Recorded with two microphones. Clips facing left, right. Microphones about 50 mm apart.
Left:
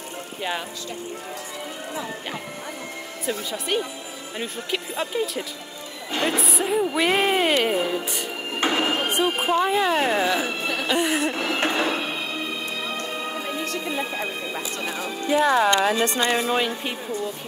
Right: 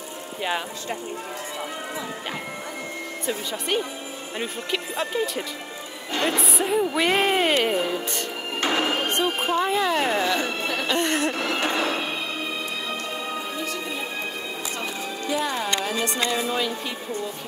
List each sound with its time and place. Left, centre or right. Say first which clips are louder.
0.4 s speech: right 2 dB; centre
3.3 s speech: left 1 dB; centre
8.0 s music: even; centre
8.5 s speech: left 1 dB; centre
11.7 s music: left 1 dB; centre
13.6 s music: left 2 dB; left
15.5 s speech: left 7 dB; left
16.0 s speech: left 3 dB; left